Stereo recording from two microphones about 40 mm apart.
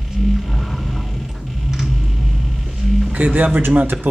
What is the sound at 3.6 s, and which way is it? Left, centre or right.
Speech, right.